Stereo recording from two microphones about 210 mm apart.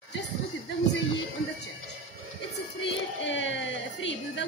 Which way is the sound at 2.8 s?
60° left (ahead or behind).